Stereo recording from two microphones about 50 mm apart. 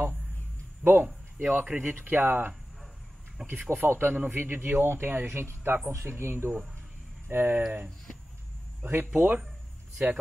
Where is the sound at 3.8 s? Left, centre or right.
Right.